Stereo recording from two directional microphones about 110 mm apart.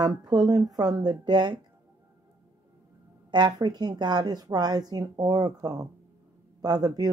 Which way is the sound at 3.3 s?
40° right (ahead or behind).